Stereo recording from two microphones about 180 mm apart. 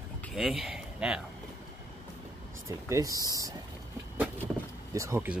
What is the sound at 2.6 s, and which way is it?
Speech, 20° right (ahead or behind).